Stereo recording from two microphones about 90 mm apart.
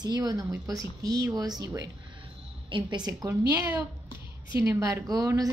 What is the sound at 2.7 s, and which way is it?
Speech, 60° right (ahead or behind).